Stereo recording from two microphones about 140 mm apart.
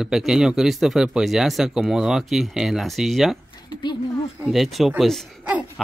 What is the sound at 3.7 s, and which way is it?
Speech, 30° left (ahead or behind).